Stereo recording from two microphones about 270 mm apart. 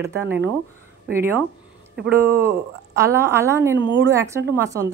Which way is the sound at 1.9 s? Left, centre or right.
Right.